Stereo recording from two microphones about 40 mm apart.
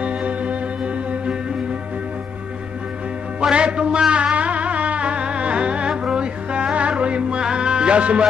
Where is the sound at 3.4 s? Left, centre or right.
Right.